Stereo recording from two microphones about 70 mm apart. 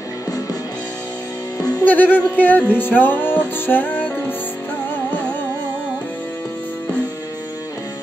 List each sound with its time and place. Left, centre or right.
1.6 s music: left
1.9 s music: left